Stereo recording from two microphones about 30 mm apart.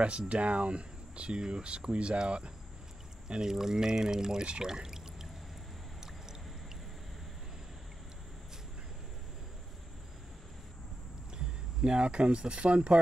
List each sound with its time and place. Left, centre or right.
0.3 s speech: right
3.3 s speech: right
4.6 s pour: centre
11.3 s speech: right